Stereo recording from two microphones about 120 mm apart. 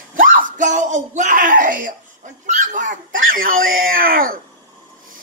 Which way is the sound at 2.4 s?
90° right.